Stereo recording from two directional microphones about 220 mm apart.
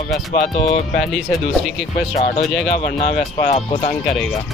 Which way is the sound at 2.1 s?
25° left (ahead or behind).